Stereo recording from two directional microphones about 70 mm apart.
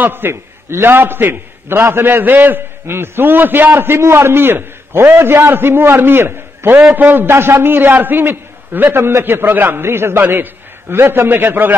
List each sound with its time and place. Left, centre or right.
0.0 s a man's voice: right